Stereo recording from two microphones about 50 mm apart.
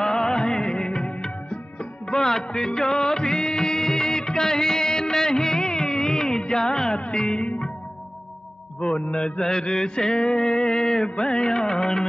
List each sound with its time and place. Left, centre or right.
0.0 s music of bollywood: centre
2.0 s music: centre
8.8 s mantra: left
11.1 s music of bollywood: left